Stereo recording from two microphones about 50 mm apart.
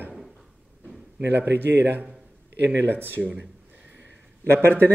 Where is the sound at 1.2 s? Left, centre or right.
Right.